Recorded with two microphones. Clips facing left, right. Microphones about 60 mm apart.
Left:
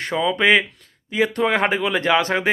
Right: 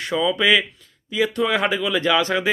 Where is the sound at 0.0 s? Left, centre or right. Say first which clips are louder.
Left 1 dB; left.